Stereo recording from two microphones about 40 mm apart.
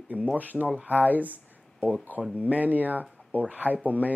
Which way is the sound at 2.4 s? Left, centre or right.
Right.